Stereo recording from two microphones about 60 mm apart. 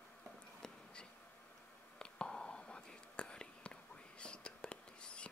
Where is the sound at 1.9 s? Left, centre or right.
Centre.